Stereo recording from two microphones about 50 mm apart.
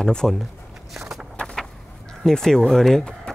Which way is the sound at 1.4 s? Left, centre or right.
Centre.